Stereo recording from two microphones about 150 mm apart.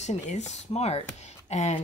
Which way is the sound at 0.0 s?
50° left (ahead or behind).